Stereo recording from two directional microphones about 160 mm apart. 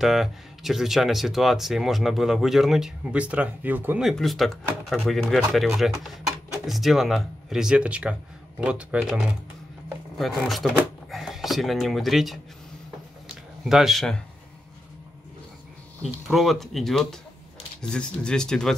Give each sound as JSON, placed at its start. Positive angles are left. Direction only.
{"t": 0.0, "sound": "speech", "side_deg": 0}
{"t": 4.0, "sound": "speech", "side_deg": 0}
{"t": 13.7, "sound": "speech", "side_deg": 0}
{"t": 16.3, "sound": "speech", "side_deg": 0}